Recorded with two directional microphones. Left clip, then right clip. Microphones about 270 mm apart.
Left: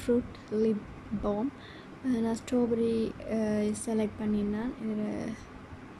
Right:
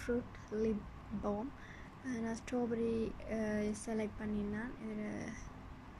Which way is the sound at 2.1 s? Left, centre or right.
Centre.